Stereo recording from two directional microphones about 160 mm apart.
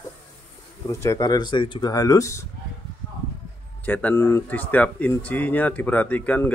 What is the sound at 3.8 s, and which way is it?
Speech, 10° left (ahead or behind).